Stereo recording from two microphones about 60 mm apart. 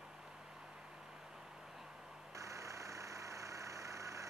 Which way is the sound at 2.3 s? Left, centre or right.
Right.